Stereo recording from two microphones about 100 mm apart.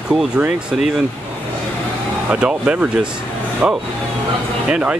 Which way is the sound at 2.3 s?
10° right (ahead or behind).